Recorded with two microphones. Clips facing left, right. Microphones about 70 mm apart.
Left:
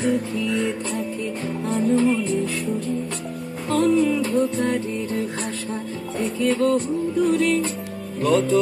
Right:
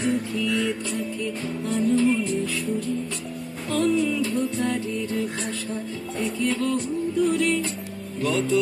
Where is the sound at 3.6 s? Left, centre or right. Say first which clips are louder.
Left 4 dB; left.